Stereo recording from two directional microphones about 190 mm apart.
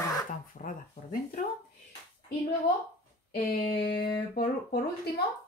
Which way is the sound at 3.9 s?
55° left (ahead or behind).